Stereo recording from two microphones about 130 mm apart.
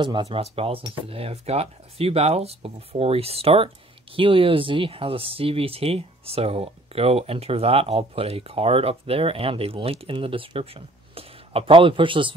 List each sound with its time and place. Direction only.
0.0 s speech: 35° right (ahead or behind)
0.4 s speech: 45° right (ahead or behind)